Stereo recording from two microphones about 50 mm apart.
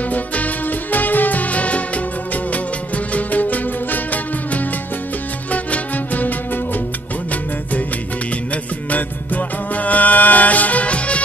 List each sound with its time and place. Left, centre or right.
0.1 s music: left
3.2 s music: left
8.9 s music: left